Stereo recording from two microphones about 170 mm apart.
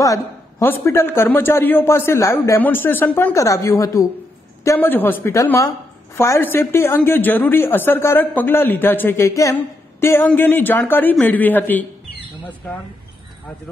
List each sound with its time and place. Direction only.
0.0 s a woman's voice: 15° left (ahead or behind)